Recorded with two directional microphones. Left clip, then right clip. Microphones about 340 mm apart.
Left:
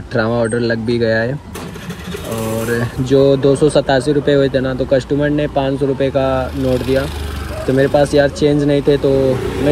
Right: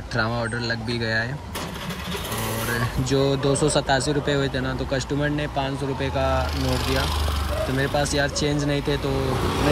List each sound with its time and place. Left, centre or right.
0.1 s speech: centre
2.7 s speech: centre
6.6 s speech: centre
7.7 s speech: centre